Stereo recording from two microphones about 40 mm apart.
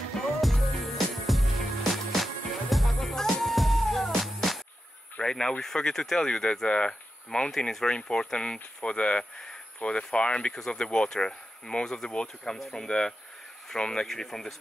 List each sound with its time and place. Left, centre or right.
0.4 s music: centre
5.2 s speech: left
14.0 s speech: centre